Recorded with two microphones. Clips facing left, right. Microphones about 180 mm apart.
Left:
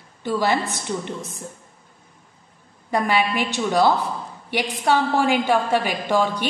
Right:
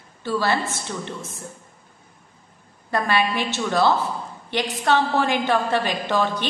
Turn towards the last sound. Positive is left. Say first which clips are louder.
# left 2 dB
turn(degrees=10)  # may be behind; listen again after turning